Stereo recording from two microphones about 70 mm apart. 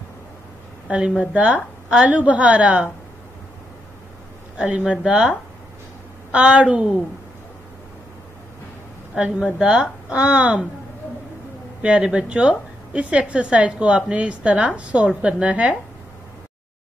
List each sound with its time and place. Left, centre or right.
0.8 s a woman's voice: centre
4.6 s a woman's voice: centre
6.3 s a woman's voice: centre
9.6 s a woman's voice: centre
11.8 s a woman's voice: centre